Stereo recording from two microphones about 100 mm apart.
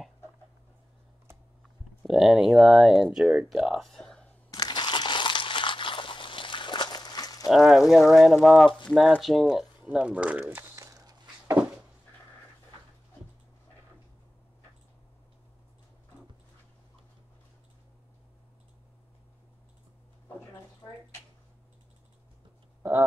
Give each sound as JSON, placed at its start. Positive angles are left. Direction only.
{"t": 2.0, "sound": "speech", "side_deg": -5}
{"t": 4.5, "sound": "crumpling", "side_deg": 45}
{"t": 7.4, "sound": "speech", "side_deg": -5}
{"t": 9.8, "sound": "speech", "side_deg": -10}
{"t": 10.4, "sound": "a sound", "side_deg": -30}
{"t": 22.8, "sound": "a sound", "side_deg": -25}